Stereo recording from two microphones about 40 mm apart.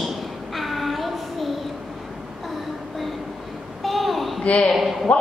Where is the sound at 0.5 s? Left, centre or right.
Centre.